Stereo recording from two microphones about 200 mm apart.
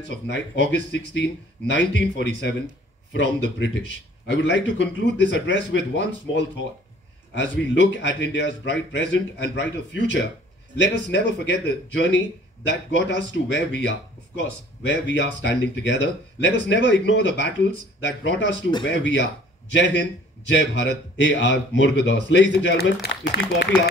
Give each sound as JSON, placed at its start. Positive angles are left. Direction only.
{"t": 0.3, "sound": "a man's voice", "side_deg": 65}